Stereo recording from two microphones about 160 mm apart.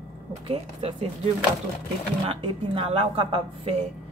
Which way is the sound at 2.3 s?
35° right (ahead or behind).